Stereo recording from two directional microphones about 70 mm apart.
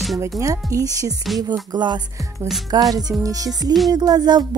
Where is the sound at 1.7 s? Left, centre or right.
Right.